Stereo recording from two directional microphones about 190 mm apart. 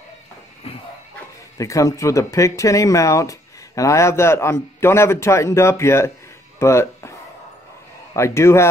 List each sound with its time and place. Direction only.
1.6 s speech: 15° left (ahead or behind)
6.6 s a sound: 15° left (ahead or behind)
8.1 s speech: 15° left (ahead or behind)